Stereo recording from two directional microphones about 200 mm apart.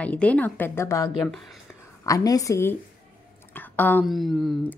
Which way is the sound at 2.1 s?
15° left (ahead or behind).